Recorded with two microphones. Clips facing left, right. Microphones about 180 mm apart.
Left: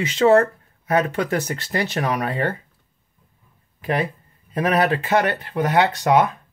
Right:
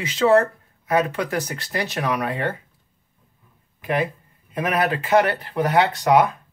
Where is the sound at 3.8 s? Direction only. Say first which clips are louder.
Even; 35° left (ahead or behind).